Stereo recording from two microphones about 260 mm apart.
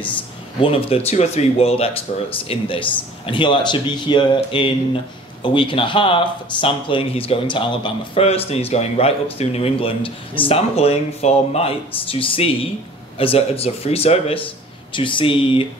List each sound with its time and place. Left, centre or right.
0.6 s speech: left